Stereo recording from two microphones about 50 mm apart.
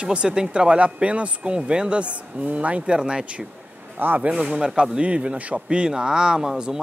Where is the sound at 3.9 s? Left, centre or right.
Right.